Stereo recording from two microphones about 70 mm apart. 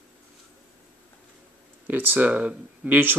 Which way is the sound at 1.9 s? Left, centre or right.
Right.